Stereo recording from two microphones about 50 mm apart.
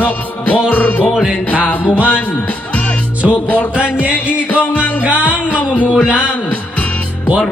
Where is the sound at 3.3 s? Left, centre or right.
Left.